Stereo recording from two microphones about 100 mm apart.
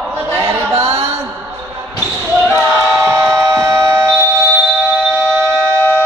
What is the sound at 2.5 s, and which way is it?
Music, 25° right (ahead or behind).